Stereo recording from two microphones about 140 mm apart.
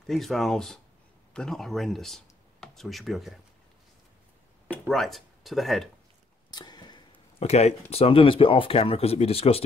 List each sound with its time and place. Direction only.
0.0 s speech: centre (ahead or behind)
4.6 s speech: centre (ahead or behind)
6.5 s speech: 30° left (ahead or behind)